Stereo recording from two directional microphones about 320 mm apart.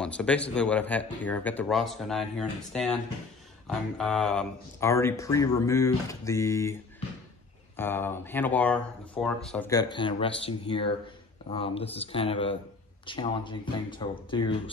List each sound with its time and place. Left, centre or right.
0.0 s speech: centre